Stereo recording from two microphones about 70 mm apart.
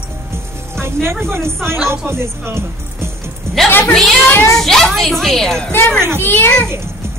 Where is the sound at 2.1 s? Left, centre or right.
Right.